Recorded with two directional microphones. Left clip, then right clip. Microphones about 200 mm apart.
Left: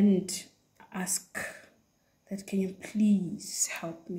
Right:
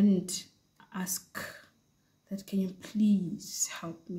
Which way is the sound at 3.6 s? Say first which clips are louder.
Left 4 dB; 20° right (ahead or behind).